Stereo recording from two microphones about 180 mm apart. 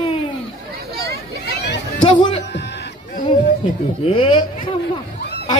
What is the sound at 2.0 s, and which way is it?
Music, 25° left (ahead or behind).